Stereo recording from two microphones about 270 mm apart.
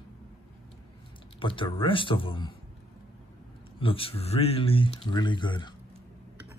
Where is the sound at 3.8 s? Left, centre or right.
Centre.